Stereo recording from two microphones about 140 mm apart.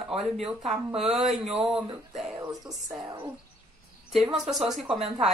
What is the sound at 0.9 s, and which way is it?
Speech, 5° right (ahead or behind).